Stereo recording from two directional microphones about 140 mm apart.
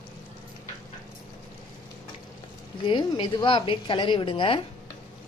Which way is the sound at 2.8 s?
35° left (ahead or behind).